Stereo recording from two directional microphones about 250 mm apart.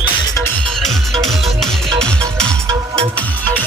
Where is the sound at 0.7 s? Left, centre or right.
Centre.